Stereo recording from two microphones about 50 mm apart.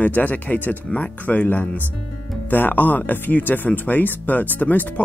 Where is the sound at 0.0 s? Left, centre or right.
Left.